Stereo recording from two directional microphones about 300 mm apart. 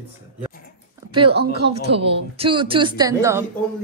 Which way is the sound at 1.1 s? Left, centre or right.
Centre.